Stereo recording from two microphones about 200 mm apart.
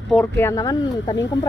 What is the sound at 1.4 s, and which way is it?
Speech, 60° left (ahead or behind).